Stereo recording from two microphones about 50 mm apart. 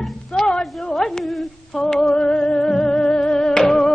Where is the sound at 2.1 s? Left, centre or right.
Centre.